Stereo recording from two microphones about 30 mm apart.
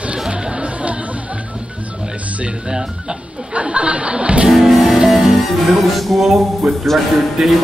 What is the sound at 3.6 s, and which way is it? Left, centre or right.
Chuckle, right.